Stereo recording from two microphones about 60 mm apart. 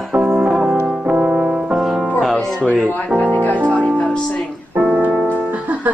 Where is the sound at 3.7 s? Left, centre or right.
Left.